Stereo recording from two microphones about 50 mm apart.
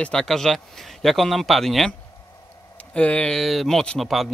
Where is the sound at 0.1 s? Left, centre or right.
Centre.